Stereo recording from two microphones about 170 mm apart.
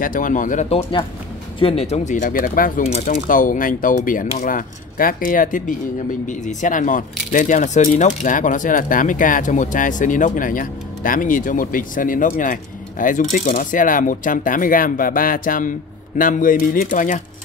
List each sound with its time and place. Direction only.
0.0 s speech: 55° left (ahead or behind)
1.6 s speech: 35° left (ahead or behind)